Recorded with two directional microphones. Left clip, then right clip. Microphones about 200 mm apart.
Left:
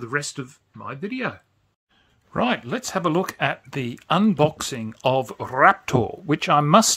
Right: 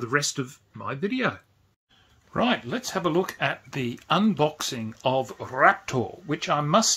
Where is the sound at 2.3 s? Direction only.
30° left (ahead or behind).